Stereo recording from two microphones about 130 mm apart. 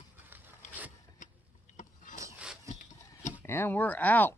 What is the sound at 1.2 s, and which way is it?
Vehicle, 75° left (ahead or behind).